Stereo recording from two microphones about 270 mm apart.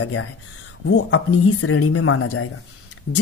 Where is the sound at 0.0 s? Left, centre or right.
Left.